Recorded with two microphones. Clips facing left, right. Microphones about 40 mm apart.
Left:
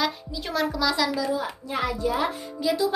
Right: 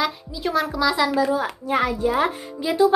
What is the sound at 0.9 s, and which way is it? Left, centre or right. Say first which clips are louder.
Speech: right 5 dB; right.